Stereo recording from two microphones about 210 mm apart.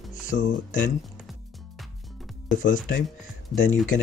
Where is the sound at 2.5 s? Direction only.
40° left (ahead or behind).